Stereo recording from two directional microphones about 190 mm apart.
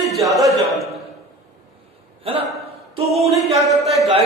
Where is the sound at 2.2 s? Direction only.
30° right (ahead or behind).